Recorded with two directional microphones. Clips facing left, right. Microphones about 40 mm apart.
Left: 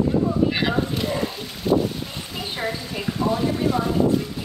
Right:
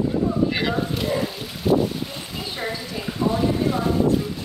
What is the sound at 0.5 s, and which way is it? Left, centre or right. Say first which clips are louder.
Boat: left 1 dB; centre.